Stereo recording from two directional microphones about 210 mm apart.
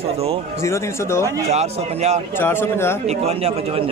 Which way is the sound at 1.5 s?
30° right (ahead or behind).